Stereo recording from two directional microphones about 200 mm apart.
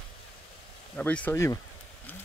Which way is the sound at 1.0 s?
5° left (ahead or behind).